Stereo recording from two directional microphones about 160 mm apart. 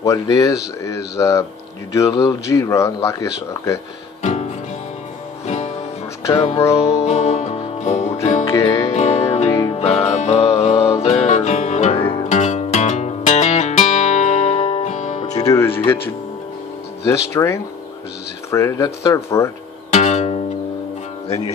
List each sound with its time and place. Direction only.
0.0 s a man's voice: 20° left (ahead or behind)
4.2 s music: 45° left (ahead or behind)
6.3 s music: 40° left (ahead or behind)
8.5 s music: 20° left (ahead or behind)
8.9 s music: 40° left (ahead or behind)
15.3 s music: 20° left (ahead or behind)
17.0 s a man's voice: 15° left (ahead or behind)
19.9 s music: 45° left (ahead or behind)